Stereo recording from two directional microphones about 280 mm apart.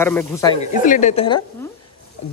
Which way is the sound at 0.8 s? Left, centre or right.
Left.